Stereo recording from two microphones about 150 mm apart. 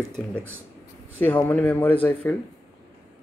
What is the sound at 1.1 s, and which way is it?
Speech, 10° left (ahead or behind).